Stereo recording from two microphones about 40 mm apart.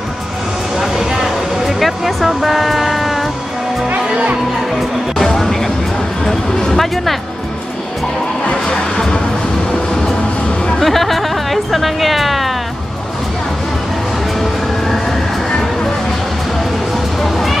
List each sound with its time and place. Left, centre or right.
0.7 s vehicle: centre
4.1 s music: right
5.1 s music: centre
8.6 s music: centre
10.8 s music: centre
14.4 s music: centre
17.2 s a sound: centre